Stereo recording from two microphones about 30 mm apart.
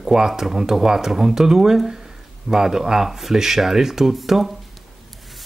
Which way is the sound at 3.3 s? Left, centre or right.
Centre.